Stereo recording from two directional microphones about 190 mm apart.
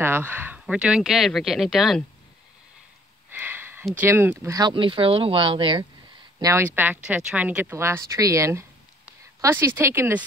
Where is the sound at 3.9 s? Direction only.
10° right (ahead or behind); by 5.8 s 25° right (ahead or behind).